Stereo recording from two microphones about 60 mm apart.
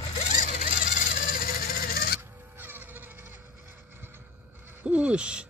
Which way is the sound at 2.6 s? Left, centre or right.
Right.